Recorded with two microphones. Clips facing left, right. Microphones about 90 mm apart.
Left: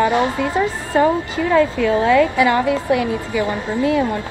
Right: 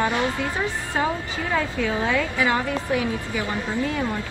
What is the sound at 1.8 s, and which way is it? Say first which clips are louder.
A woman's voice: left 9 dB; 80° left.